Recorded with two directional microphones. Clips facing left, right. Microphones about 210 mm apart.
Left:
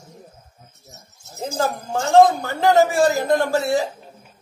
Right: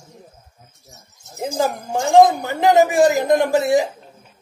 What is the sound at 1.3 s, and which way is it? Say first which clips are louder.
Speech: right 2 dB; 15° right (ahead or behind).